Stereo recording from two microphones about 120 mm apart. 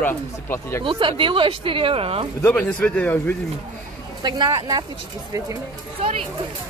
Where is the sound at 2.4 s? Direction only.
10° left (ahead or behind).